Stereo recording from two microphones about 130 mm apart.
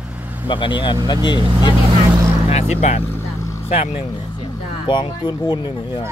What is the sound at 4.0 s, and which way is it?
Speech, 40° left (ahead or behind).